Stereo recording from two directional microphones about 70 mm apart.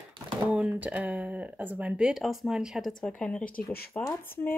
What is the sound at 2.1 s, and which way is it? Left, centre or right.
Speech, centre.